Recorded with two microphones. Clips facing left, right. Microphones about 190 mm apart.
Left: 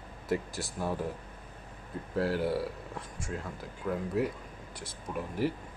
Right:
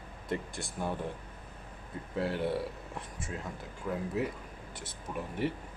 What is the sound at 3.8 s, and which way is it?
Speech, 10° right (ahead or behind).